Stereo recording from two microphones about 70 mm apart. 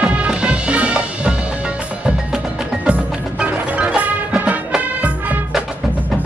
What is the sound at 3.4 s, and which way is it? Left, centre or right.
Music, right.